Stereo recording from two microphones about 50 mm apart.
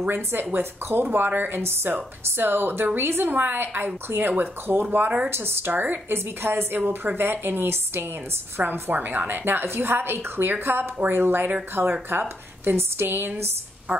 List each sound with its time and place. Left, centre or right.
0.0 s speech: right
5.7 s a woman's voice: right
6.0 s a woman's voice: right
11.8 s speech: right
12.1 s speech: right